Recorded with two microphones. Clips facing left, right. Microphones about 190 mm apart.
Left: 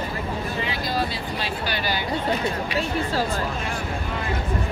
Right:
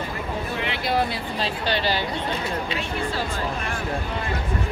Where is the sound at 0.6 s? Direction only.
65° right (ahead or behind).